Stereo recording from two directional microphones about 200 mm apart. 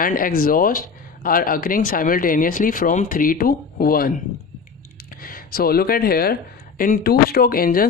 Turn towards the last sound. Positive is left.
turn(degrees=45)  # may be behind; listen again after turning